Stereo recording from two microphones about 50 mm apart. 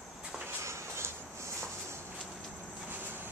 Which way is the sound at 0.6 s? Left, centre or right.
Right.